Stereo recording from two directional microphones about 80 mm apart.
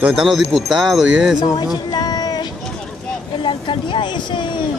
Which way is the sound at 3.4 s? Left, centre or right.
Left.